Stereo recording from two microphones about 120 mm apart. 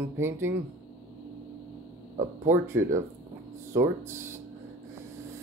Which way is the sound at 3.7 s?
25° right (ahead or behind).